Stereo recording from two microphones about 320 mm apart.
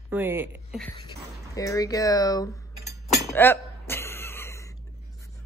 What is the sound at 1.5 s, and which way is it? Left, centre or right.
Speech, centre.